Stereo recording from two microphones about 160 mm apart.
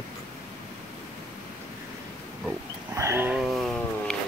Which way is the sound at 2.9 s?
15° right (ahead or behind).